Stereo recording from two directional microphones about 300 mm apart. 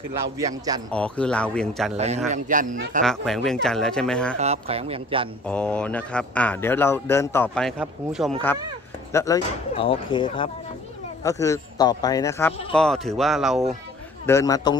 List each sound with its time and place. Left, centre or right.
0.4 s a man's voice: centre
0.9 s speech: centre
2.0 s speech: right
3.0 s speech: centre
4.4 s speech: right
5.5 s speech: centre
9.1 s speech: centre
14.2 s speech: centre